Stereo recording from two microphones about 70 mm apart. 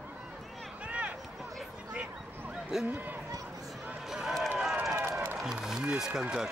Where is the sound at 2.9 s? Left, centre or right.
Right.